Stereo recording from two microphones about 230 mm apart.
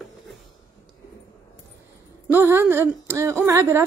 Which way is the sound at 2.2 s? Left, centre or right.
Centre.